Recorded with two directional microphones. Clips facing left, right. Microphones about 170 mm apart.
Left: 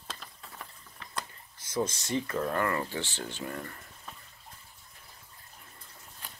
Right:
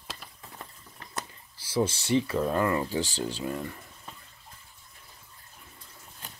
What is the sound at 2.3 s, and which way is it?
Speech, 15° right (ahead or behind).